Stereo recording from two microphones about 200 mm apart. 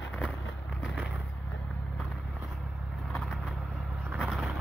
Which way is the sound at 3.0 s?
5° left (ahead or behind).